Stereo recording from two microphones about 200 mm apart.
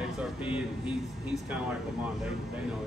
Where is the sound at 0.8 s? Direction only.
5° right (ahead or behind).